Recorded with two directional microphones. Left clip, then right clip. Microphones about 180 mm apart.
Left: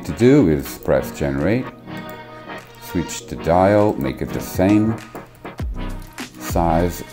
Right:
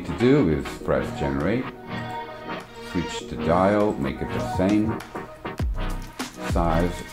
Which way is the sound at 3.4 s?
35° left (ahead or behind).